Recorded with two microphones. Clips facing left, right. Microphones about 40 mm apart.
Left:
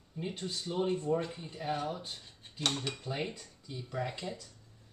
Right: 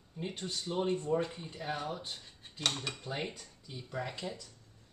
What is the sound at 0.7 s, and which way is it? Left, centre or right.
Speech, centre.